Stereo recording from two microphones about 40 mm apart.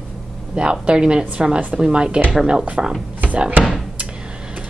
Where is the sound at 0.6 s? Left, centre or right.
Right.